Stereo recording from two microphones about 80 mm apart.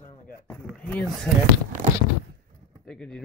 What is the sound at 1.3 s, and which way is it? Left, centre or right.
Speech, centre.